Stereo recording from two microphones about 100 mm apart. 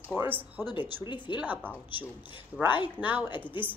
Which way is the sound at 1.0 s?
50° left (ahead or behind).